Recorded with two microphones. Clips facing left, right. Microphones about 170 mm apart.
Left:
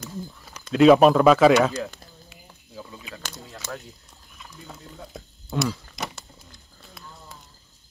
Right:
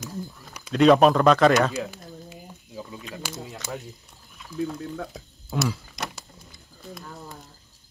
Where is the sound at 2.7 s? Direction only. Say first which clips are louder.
Right 2 dB; 15° right (ahead or behind).